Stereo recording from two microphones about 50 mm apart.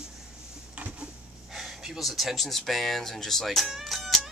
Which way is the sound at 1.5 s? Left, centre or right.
Centre.